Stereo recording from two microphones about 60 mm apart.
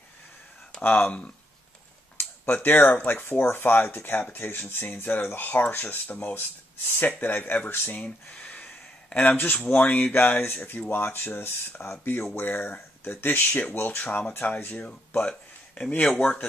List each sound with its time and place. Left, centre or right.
0.7 s speech: centre
2.1 s a sound: left
3.1 s speech: left
8.3 s a sound: centre
9.3 s speech: left
16.0 s speech: centre